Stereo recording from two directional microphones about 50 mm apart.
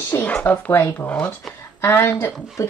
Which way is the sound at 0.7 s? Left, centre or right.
Left.